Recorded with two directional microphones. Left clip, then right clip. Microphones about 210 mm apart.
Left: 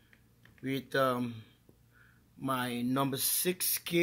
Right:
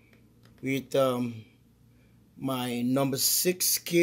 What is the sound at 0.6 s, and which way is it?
Speech, 5° left (ahead or behind).